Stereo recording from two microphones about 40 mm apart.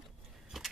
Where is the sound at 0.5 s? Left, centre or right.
Centre.